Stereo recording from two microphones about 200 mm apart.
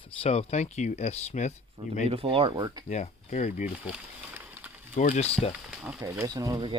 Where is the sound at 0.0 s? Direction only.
30° left (ahead or behind).